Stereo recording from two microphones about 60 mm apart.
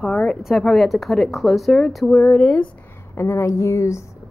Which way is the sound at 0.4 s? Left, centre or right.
Centre.